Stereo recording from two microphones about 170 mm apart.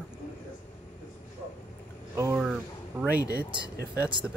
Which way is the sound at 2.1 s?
15° right (ahead or behind).